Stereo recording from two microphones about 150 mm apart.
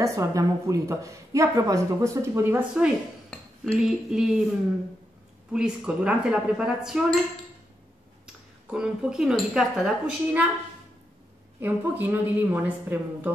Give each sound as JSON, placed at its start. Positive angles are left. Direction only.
{"t": 0.0, "sound": "a woman's voice", "side_deg": -20}
{"t": 3.3, "sound": "cutlery", "side_deg": 5}
{"t": 5.5, "sound": "speech", "side_deg": -5}
{"t": 8.6, "sound": "speech", "side_deg": -5}
{"t": 11.6, "sound": "speech", "side_deg": -15}